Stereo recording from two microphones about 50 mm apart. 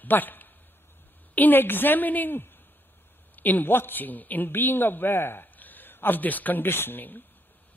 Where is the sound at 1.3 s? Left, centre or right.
Left.